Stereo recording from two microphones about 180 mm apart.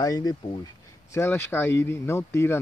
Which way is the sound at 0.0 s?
20° left (ahead or behind).